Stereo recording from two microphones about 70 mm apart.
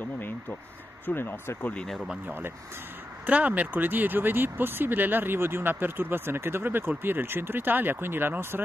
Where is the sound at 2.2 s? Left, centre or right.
Right.